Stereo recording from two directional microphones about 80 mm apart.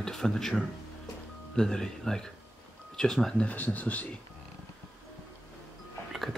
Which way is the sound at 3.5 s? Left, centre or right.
Centre.